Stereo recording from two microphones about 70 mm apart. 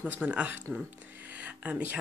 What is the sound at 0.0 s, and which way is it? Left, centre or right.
Speech, centre.